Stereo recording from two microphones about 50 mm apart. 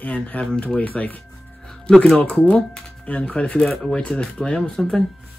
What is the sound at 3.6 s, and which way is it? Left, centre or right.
Speech, centre.